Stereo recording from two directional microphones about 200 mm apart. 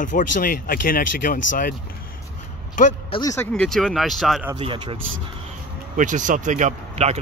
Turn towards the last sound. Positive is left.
turn(degrees=-35)  # may be behind; listen again after turning